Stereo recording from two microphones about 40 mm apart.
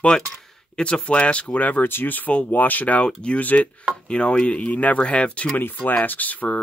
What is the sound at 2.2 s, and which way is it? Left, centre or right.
Speech, left.